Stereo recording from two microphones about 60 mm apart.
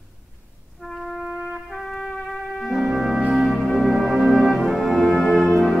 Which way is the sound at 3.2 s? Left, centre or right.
Centre.